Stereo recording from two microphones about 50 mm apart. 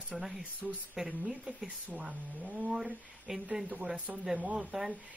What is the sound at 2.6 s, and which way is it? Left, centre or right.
Speech, centre.